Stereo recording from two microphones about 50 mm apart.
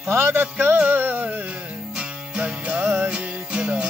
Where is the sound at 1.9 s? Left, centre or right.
Right.